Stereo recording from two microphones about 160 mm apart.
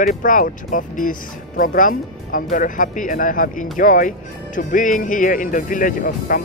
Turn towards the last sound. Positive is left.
turn(degrees=55)  # may be behind; listen again after turning